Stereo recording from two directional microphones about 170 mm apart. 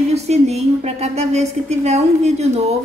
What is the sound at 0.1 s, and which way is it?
A woman's voice, 40° right (ahead or behind).